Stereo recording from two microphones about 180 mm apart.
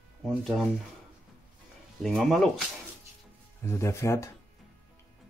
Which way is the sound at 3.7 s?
15° left (ahead or behind).